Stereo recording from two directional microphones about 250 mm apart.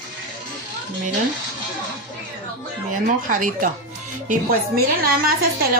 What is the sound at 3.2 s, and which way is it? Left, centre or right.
Speech, right.